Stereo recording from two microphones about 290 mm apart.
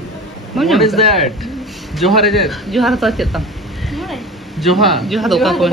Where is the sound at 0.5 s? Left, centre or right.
Centre.